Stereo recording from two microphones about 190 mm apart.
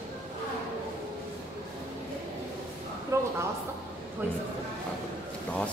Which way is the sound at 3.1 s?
15° right (ahead or behind).